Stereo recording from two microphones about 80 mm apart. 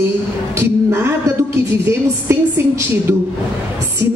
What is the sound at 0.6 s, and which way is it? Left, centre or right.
Speech, right.